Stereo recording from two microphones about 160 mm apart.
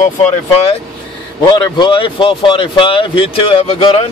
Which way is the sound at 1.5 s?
30° left (ahead or behind).